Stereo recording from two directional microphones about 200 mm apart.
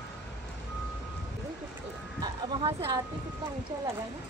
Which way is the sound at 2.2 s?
20° right (ahead or behind).